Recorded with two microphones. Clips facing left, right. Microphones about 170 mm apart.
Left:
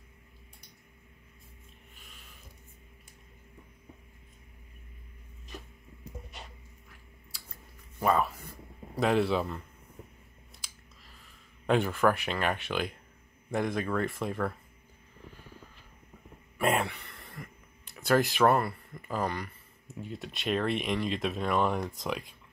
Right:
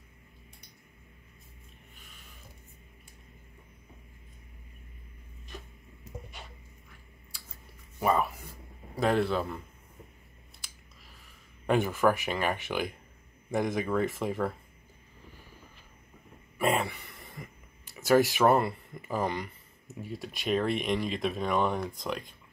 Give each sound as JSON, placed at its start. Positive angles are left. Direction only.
{"t": 8.0, "sound": "speech", "side_deg": 0}
{"t": 11.6, "sound": "speech", "side_deg": -5}
{"t": 16.5, "sound": "a sound", "side_deg": 0}
{"t": 17.0, "sound": "throat clearing", "side_deg": -15}
{"t": 18.0, "sound": "speech", "side_deg": -5}
{"t": 18.5, "sound": "speech", "side_deg": -20}
{"t": 19.9, "sound": "speech", "side_deg": -5}